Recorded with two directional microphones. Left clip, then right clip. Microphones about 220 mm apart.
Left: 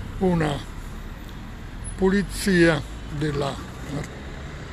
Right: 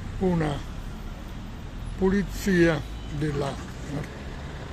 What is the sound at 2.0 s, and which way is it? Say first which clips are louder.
Speech: left 3 dB; centre (ahead or behind).